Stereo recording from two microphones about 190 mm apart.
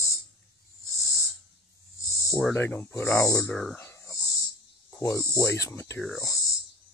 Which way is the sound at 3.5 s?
5° left (ahead or behind).